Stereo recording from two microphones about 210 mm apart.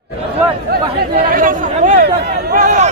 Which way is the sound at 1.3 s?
40° right (ahead or behind).